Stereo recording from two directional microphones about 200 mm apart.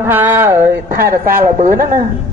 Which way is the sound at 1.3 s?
45° right (ahead or behind).